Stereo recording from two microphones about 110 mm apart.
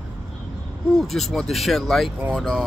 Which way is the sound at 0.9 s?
Centre (ahead or behind).